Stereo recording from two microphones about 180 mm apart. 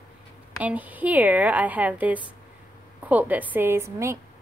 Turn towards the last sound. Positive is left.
turn(degrees=-15)  # may be behind; listen again after turning